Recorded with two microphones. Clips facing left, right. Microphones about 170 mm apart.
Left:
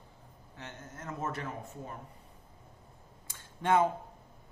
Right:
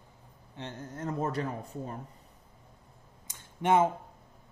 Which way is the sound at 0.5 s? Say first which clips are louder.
Right 6 dB; 30° right (ahead or behind).